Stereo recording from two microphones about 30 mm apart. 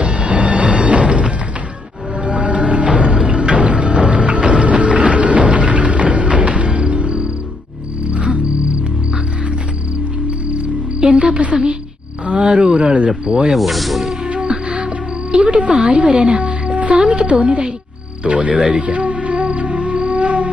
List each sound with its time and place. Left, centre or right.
0.0 s music: right
8.1 s cricket: right
10.5 s cricket: right
12.3 s a sound: right
12.7 s cricket: right
13.5 s snake: centre
14.3 s music: right
15.9 s speech: right
16.3 s music: right
16.9 s speech: right
18.7 s music: right